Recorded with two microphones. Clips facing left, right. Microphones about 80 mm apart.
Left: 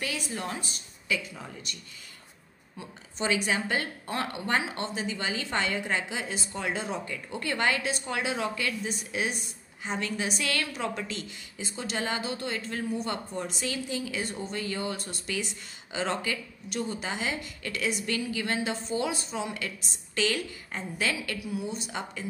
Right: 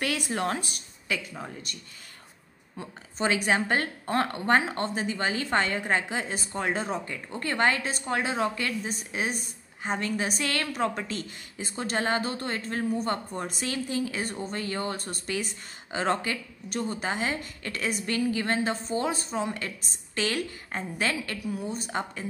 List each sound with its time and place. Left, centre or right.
0.0 s a woman's voice: right
1.1 s a woman's voice: right
2.8 s a woman's voice: right